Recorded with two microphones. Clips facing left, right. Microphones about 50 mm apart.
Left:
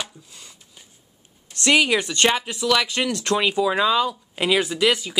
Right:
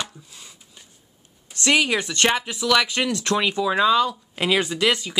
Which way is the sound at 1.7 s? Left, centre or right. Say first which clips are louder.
Left 2 dB; left.